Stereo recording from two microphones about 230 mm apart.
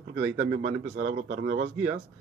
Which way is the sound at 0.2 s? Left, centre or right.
Right.